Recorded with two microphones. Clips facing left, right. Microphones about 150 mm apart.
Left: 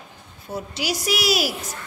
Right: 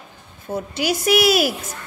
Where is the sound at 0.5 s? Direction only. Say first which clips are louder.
Right 5 dB; 55° right (ahead or behind).